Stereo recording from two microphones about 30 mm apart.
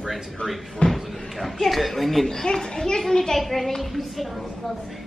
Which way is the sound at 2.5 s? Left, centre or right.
Centre.